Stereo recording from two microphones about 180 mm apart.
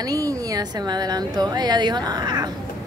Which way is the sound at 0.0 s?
20° right (ahead or behind).